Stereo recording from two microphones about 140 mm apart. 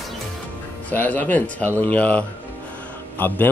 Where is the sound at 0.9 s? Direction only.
10° left (ahead or behind).